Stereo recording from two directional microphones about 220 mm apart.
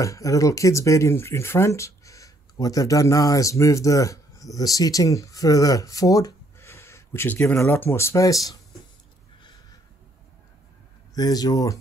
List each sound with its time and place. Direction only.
0.0 s speech: 15° left (ahead or behind)
11.1 s speech: 15° left (ahead or behind)